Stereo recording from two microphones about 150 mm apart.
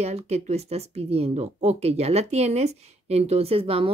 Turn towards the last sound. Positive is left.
turn(degrees=-40)  # may be behind; listen again after turning